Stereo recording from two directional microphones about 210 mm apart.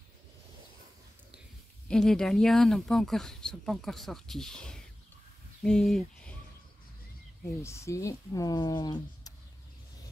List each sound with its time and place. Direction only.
1.9 s speech: 5° left (ahead or behind)
7.6 s speech: 15° left (ahead or behind)